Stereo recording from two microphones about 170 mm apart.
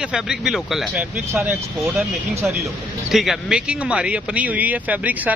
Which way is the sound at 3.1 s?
Centre (ahead or behind).